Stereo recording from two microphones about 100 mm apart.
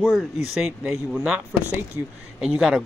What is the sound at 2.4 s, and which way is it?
Speech, 10° right (ahead or behind).